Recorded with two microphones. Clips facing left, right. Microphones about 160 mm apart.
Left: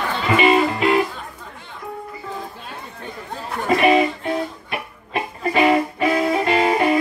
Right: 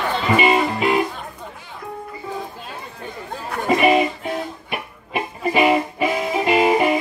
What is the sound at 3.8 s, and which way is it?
Music, 5° right (ahead or behind).